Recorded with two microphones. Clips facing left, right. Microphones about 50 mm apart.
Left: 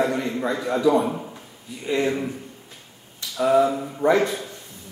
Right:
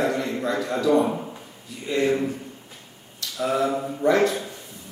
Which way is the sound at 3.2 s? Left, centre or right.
Centre.